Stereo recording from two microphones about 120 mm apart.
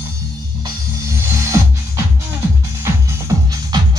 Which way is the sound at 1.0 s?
25° right (ahead or behind).